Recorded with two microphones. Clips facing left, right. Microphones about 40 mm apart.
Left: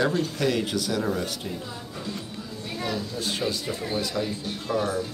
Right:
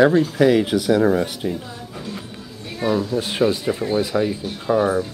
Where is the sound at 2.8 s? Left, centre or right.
Right.